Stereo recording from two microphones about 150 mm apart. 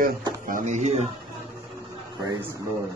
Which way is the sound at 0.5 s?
60° right (ahead or behind).